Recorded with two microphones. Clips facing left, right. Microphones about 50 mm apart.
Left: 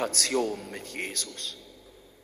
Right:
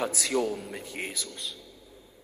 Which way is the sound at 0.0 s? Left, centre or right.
Centre.